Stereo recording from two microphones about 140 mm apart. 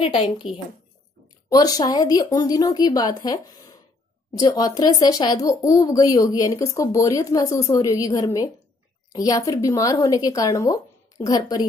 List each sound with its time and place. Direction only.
0.0 s a woman's voice: 40° left (ahead or behind)
1.5 s speech: 25° left (ahead or behind)